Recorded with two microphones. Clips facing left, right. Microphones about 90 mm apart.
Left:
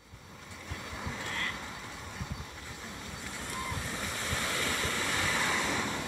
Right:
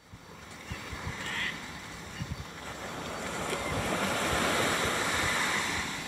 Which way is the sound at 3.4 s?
70° right (ahead or behind).